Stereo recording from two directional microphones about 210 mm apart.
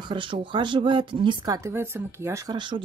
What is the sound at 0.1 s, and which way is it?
Speech, 25° right (ahead or behind).